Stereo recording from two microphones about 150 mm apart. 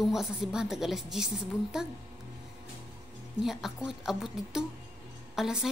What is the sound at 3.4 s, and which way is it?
A woman's voice, centre (ahead or behind).